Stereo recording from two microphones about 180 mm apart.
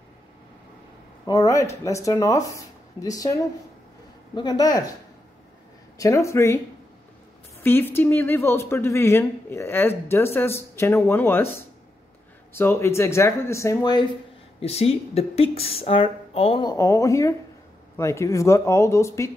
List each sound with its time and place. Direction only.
1.2 s speech: 20° left (ahead or behind)
4.4 s speech: 25° left (ahead or behind)
5.9 s speech: 20° left (ahead or behind)
7.6 s speech: 10° left (ahead or behind)
14.6 s a woman's voice: 35° left (ahead or behind); by 19.3 s 15° left (ahead or behind)